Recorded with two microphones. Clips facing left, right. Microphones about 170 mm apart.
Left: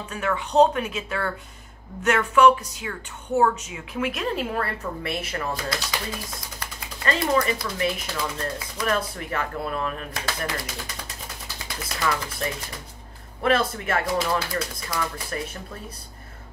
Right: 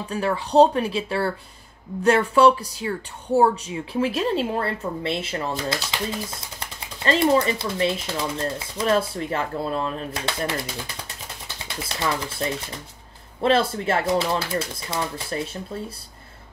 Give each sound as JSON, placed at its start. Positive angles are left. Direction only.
{"t": 0.1, "sound": "speech", "side_deg": -35}